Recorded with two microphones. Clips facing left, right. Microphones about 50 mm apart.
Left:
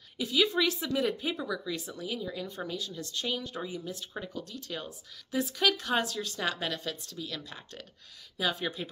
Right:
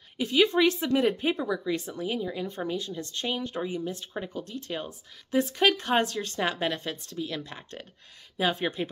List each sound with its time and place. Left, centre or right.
0.2 s a woman's voice: right